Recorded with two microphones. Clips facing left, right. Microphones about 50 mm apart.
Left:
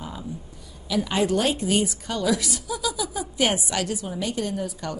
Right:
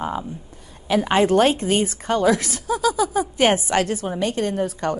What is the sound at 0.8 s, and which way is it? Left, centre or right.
A woman's voice, right.